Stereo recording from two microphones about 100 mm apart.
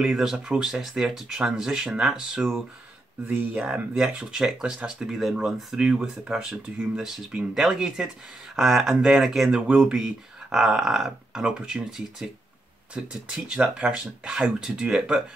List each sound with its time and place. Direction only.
0.0 s speech: 5° right (ahead or behind)
3.3 s speech: 20° right (ahead or behind)